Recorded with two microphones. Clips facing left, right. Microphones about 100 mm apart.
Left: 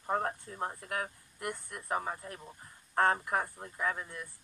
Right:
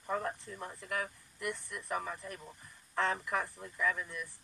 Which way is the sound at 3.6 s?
40° left (ahead or behind).